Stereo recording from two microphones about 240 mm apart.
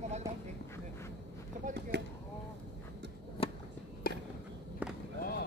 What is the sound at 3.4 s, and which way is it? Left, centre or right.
Chop, left.